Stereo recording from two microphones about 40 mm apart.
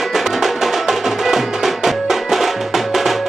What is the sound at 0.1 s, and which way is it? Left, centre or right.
Music, centre.